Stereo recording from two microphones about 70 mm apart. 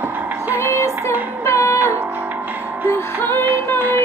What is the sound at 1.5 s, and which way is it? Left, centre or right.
Music, left.